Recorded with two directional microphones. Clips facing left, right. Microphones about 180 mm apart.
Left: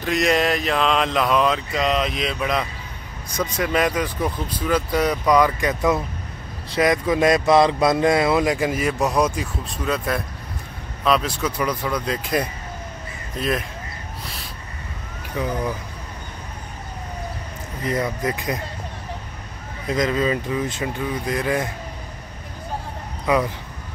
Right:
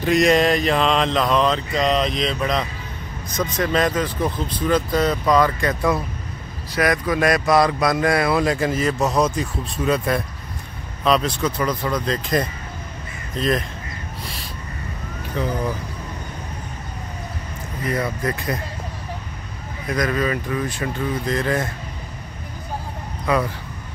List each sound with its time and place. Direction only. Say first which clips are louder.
0.0 s speech: right 4 dB; centre (ahead or behind)
15.3 s speech: right 1 dB; 10° left (ahead or behind)
17.8 s speech: even; 20° left (ahead or behind)
19.9 s speech: left 1 dB; 20° left (ahead or behind)
23.3 s speech: left 1 dB; 20° left (ahead or behind)